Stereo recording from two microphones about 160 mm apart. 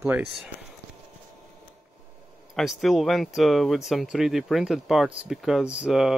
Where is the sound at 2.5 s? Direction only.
Centre (ahead or behind).